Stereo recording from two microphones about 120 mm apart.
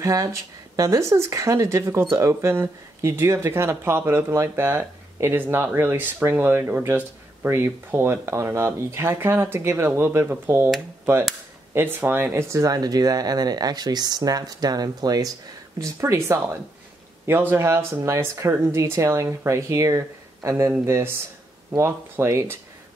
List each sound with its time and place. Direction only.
0.0 s speech: 30° right (ahead or behind)
11.7 s speech: 15° right (ahead or behind)